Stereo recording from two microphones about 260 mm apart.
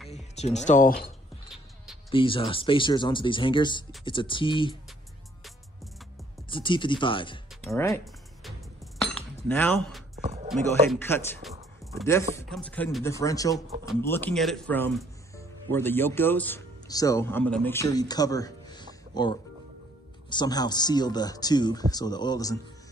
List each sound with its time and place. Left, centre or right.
0.1 s speech: left
2.0 s speech: centre
6.5 s speech: centre
9.0 s cutlery: centre
10.2 s a sound: right
10.5 s speech: centre